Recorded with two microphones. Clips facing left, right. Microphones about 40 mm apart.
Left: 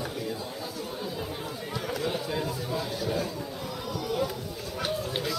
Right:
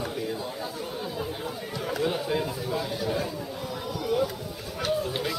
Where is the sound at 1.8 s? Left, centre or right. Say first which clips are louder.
Right 3 dB; centre.